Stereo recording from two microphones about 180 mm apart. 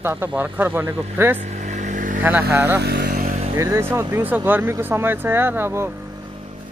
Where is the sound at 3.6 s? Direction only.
15° right (ahead or behind).